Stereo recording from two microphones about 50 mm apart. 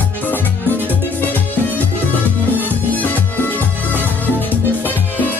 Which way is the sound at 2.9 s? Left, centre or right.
Left.